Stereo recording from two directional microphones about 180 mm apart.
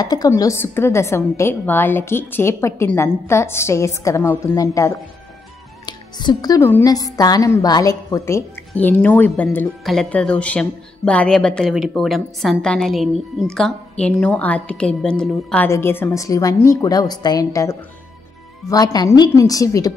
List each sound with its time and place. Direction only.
0.1 s a woman's voice: 20° left (ahead or behind)